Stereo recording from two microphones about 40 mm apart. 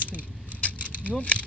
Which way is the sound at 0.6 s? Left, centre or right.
Left.